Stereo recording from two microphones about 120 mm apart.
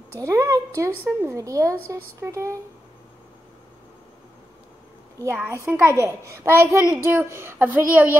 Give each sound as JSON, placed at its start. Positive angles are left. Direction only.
{"t": 0.2, "sound": "a child's voice", "side_deg": -30}
{"t": 5.2, "sound": "a child's voice", "side_deg": -20}